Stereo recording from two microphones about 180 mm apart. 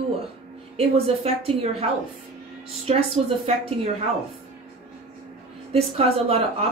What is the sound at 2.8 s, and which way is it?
Speech, 35° right (ahead or behind).